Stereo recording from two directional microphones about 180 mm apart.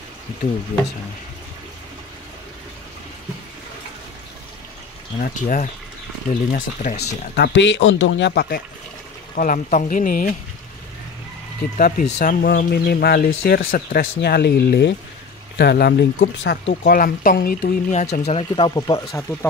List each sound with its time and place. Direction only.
5.2 s speech: 45° left (ahead or behind)
7.0 s speech: 65° left (ahead or behind); by 10.3 s 45° left (ahead or behind)
11.7 s speech: 45° left (ahead or behind)
12.4 s speech: 55° left (ahead or behind)
14.0 s speech: 65° left (ahead or behind); by 19.5 s 20° left (ahead or behind)